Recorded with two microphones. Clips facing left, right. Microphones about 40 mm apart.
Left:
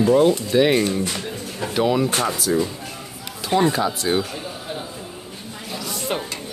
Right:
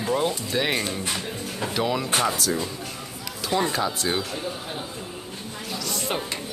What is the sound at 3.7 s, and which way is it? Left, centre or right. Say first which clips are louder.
Speech: left 4 dB; centre.